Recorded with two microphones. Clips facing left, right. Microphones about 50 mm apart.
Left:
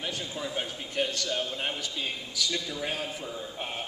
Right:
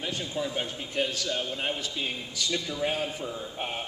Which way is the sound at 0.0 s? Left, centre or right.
Centre.